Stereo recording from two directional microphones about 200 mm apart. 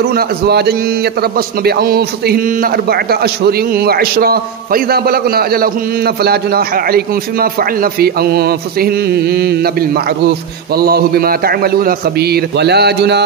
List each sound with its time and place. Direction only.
0.1 s a man's voice: 55° right (ahead or behind)